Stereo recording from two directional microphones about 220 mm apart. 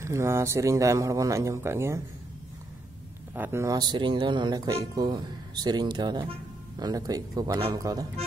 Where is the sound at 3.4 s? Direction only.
10° right (ahead or behind).